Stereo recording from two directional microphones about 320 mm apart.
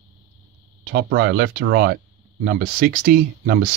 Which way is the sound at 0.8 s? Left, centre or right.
Right.